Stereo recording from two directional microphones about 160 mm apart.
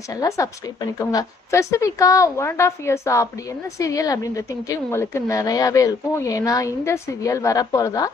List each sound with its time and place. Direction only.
0.1 s a woman's voice: 25° left (ahead or behind)